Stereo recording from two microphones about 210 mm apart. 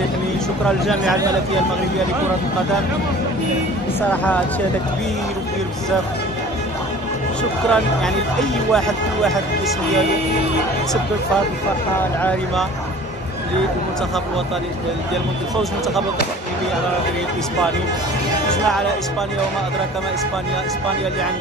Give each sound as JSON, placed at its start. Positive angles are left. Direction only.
{"t": 0.7, "sound": "speech", "side_deg": 0}
{"t": 4.1, "sound": "speech", "side_deg": 5}
{"t": 7.7, "sound": "speech", "side_deg": 5}
{"t": 12.2, "sound": "speech", "side_deg": 5}